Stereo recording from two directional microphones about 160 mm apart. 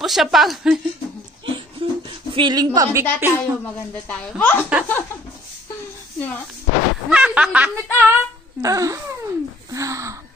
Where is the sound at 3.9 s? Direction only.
10° left (ahead or behind).